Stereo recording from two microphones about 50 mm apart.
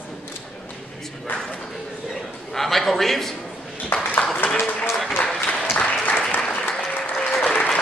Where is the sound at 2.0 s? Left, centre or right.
Centre.